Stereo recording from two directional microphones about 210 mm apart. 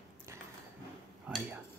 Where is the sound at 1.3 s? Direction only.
5° right (ahead or behind).